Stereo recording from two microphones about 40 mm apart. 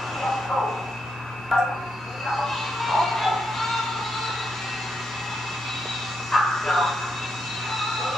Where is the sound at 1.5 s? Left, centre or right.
Centre.